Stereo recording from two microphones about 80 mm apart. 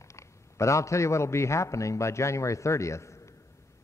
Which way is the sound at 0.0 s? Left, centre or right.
Left.